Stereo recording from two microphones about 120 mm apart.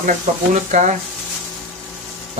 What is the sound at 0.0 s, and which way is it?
Speech, 90° right.